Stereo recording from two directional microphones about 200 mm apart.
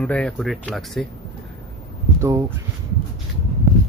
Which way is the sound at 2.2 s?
15° right (ahead or behind).